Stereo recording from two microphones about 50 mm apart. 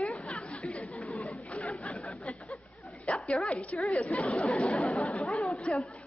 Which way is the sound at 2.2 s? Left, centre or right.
Centre.